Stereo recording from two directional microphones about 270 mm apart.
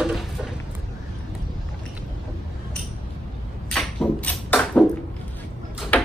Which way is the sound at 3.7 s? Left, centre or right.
Centre.